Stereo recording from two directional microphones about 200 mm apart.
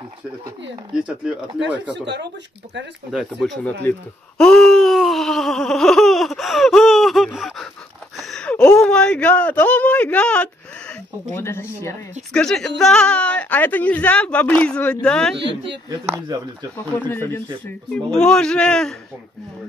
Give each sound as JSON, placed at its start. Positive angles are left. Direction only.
{"t": 0.9, "sound": "speech", "side_deg": -5}
{"t": 3.1, "sound": "speech", "side_deg": -5}
{"t": 4.4, "sound": "wail", "side_deg": 0}
{"t": 8.2, "sound": "a man's voice", "side_deg": 5}
{"t": 16.3, "sound": "speech", "side_deg": -20}
{"t": 17.1, "sound": "a woman's voice", "side_deg": 10}